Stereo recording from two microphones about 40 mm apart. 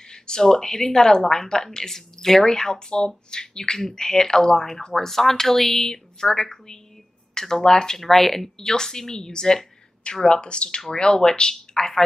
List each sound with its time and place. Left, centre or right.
0.0 s speech: centre